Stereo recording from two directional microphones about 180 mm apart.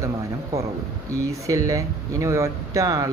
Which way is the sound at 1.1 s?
15° right (ahead or behind).